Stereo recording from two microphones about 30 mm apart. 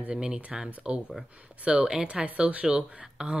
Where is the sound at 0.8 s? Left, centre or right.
Right.